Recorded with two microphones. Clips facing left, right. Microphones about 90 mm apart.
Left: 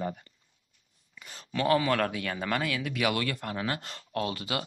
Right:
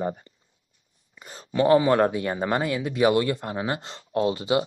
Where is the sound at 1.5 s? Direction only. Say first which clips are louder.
Right 7 dB; 25° right (ahead or behind).